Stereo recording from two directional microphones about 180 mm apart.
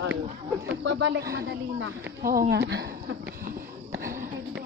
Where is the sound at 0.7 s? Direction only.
75° right (ahead or behind).